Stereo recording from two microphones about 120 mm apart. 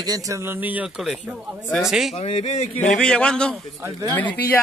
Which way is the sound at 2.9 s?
5° left (ahead or behind).